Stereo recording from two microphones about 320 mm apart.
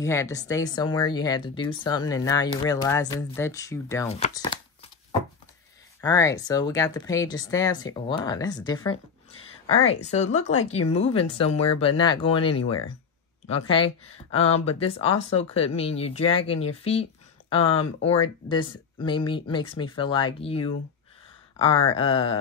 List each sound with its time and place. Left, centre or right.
0.0 s speech: centre
5.9 s speech: centre
12.6 s speech: left
14.3 s speech: centre
21.9 s speech: centre